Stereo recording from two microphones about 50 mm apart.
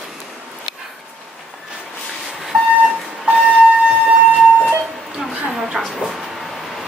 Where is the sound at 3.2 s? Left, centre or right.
Right.